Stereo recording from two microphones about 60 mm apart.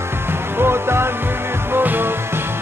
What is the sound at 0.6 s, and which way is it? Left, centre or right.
Music, right.